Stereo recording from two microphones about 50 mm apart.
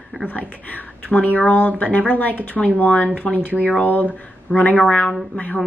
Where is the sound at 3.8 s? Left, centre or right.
Left.